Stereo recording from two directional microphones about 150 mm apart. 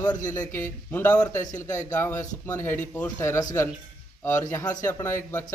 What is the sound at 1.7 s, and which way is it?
A man's voice, 20° left (ahead or behind).